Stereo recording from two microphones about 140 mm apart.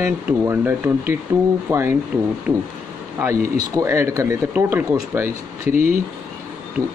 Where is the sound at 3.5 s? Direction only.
20° right (ahead or behind).